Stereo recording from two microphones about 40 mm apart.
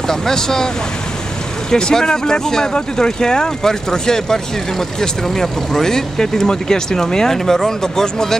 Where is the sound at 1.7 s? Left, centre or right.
Centre.